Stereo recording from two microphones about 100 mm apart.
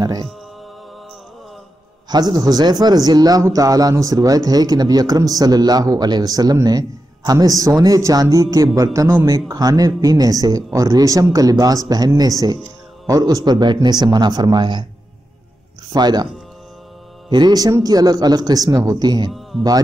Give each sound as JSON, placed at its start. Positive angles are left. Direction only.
{"t": 0.0, "sound": "speech", "side_deg": -40}
{"t": 2.0, "sound": "a man's voice", "side_deg": -45}
{"t": 15.9, "sound": "a man's voice", "side_deg": -45}
{"t": 17.3, "sound": "a man's voice", "side_deg": -45}